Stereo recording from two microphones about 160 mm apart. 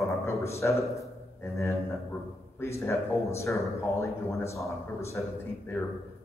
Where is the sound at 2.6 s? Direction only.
15° left (ahead or behind).